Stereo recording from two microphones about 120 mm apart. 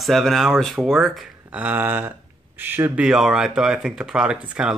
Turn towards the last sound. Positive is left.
turn(degrees=-10)  # may be behind; listen again after turning